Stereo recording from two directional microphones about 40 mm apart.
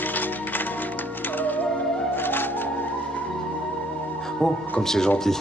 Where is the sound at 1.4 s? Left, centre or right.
Left.